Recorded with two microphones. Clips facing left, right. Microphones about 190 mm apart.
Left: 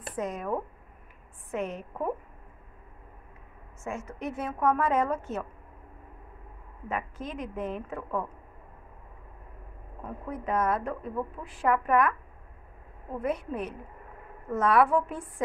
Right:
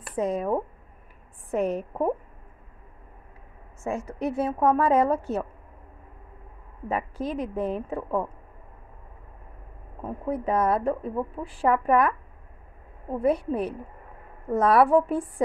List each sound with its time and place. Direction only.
0.1 s a woman's voice: 30° right (ahead or behind)
3.8 s a woman's voice: 35° right (ahead or behind)
6.9 s a woman's voice: 35° right (ahead or behind)
10.0 s a woman's voice: 30° right (ahead or behind)
13.2 s a woman's voice: 35° right (ahead or behind)